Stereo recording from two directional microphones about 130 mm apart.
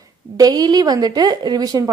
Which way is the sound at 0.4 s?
30° right (ahead or behind).